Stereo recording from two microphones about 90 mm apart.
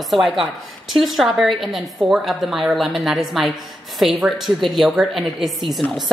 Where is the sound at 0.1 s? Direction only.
Centre (ahead or behind).